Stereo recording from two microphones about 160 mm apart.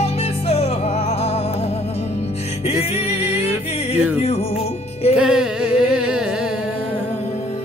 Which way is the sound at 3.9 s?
40° left (ahead or behind).